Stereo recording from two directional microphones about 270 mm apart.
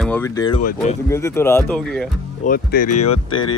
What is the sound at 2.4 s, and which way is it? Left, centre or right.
Speech, left.